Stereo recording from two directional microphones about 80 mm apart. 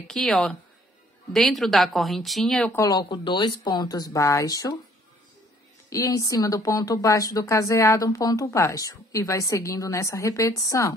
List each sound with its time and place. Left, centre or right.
0.0 s a woman's voice: centre
2.9 s speech: left
4.1 s speech: left
4.5 s speech: left
5.9 s speech: left
8.5 s speech: left
8.7 s speech: left